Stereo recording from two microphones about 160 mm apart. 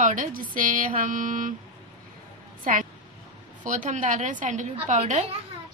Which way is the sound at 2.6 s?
55° right (ahead or behind).